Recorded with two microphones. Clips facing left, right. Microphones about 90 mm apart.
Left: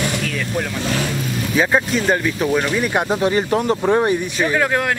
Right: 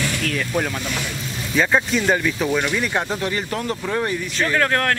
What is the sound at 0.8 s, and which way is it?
Speech, 45° left (ahead or behind).